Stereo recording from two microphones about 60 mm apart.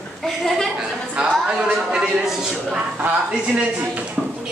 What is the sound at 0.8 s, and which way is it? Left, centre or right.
Music, centre.